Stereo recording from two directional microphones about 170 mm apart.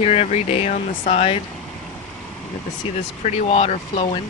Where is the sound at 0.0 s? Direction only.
35° left (ahead or behind).